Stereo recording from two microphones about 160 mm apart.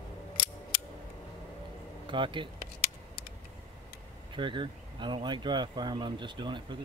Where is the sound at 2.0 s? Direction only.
30° right (ahead or behind).